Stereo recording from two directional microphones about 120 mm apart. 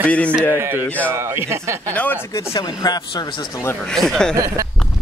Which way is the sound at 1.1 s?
20° right (ahead or behind).